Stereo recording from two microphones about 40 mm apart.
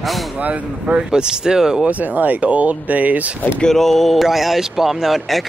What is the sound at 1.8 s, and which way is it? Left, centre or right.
Speech, right.